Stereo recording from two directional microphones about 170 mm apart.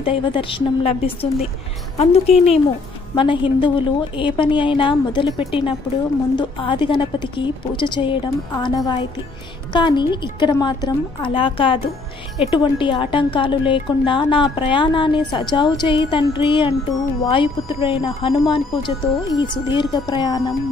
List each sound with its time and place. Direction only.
0.0 s a woman's voice: 30° left (ahead or behind)